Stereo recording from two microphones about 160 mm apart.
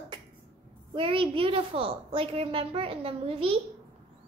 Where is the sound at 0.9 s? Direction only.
35° right (ahead or behind).